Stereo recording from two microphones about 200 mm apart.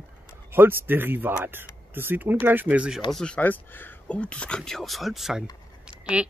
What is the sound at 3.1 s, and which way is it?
Speech, 5° left (ahead or behind).